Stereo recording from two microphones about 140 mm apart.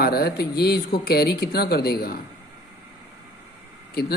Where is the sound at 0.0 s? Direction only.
90° left.